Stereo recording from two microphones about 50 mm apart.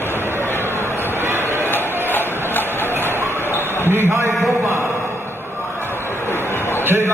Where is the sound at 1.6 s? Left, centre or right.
Left.